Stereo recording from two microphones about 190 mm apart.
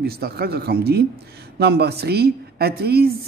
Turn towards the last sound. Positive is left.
turn(degrees=-55)  # may be behind; listen again after turning